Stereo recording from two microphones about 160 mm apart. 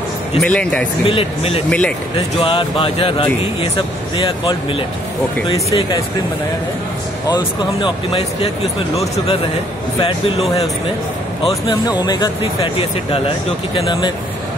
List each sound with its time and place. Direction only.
0.4 s speech: 5° left (ahead or behind)
1.0 s speech: 35° left (ahead or behind)
1.7 s speech: 5° left (ahead or behind)
2.4 s speech: 35° left (ahead or behind)
7.2 s speech: 30° left (ahead or behind)
11.4 s speech: 30° left (ahead or behind)